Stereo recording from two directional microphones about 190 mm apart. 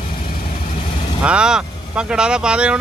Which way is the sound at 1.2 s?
5° right (ahead or behind).